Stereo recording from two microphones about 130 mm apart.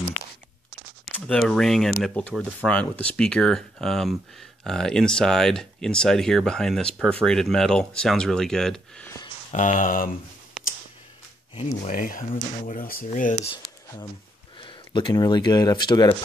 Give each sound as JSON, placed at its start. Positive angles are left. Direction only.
{"t": 1.2, "sound": "speech", "side_deg": 5}
{"t": 9.5, "sound": "speech", "side_deg": 75}
{"t": 10.6, "sound": "a sound", "side_deg": -5}
{"t": 11.8, "sound": "speech", "side_deg": 90}
{"t": 14.6, "sound": "speech", "side_deg": 40}